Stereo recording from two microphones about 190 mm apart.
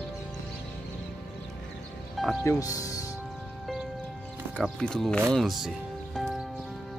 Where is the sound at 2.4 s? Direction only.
15° left (ahead or behind).